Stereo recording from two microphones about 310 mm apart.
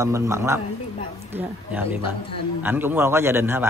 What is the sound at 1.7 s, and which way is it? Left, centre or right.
Speech, centre.